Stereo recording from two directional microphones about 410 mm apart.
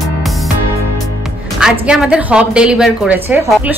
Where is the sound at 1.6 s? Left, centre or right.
Centre.